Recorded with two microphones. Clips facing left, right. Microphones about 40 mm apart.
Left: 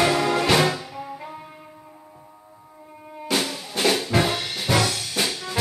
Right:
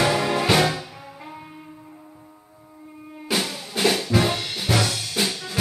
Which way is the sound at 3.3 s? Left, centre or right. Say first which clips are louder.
Even; centre.